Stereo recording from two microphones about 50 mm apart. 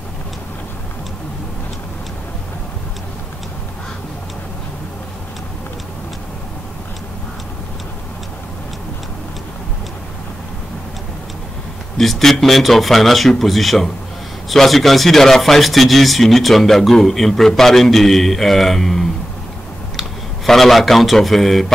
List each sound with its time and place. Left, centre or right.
12.0 s speech: centre